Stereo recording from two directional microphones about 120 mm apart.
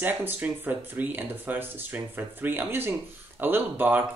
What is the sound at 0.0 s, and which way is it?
Speech, 15° right (ahead or behind).